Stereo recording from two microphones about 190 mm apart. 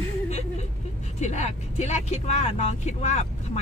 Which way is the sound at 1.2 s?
35° left (ahead or behind).